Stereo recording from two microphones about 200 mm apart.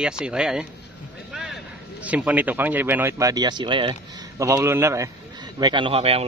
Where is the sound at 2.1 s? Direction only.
5° right (ahead or behind); by 3.9 s 25° right (ahead or behind).